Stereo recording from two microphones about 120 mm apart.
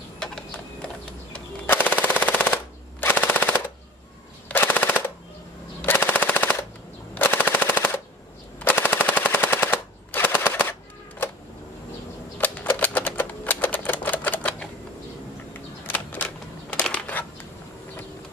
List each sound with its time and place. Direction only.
0.2 s horse: 5° left (ahead or behind)
1.3 s machine gun: 15° left (ahead or behind)
12.4 s typewriter: 15° left (ahead or behind)
15.9 s a sound: 15° left (ahead or behind)